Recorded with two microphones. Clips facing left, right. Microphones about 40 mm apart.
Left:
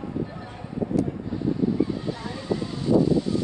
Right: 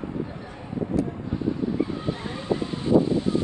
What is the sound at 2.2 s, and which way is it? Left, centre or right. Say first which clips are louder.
Vehicle: right 2 dB; right.